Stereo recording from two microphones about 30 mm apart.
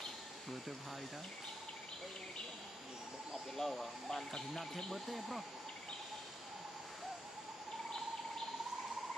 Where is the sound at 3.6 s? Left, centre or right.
Centre.